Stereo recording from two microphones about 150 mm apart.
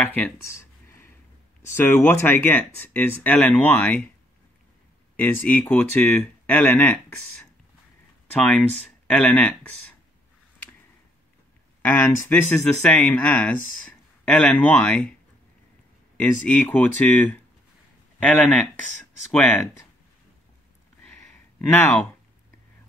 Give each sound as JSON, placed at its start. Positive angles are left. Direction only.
{"t": 0.0, "sound": "a sound", "side_deg": 15}
{"t": 1.8, "sound": "speech", "side_deg": 20}
{"t": 5.1, "sound": "speech", "side_deg": 10}
{"t": 8.4, "sound": "speech", "side_deg": 10}
{"t": 11.8, "sound": "speech", "side_deg": 10}
{"t": 16.2, "sound": "speech", "side_deg": 10}
{"t": 19.3, "sound": "speech", "side_deg": 10}
{"t": 21.0, "sound": "a sound", "side_deg": 5}